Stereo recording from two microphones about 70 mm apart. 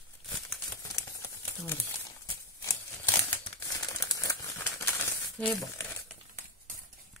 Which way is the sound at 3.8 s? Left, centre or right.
Left.